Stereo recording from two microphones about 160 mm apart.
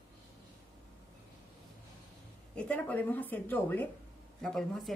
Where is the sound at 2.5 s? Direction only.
10° left (ahead or behind).